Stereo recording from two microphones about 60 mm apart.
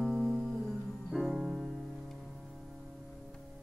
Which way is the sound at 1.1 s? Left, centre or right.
Centre.